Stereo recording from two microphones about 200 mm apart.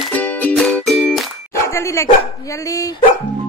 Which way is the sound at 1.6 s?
15° left (ahead or behind).